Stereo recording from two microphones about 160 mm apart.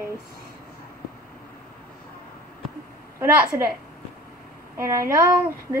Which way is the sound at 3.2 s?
15° right (ahead or behind).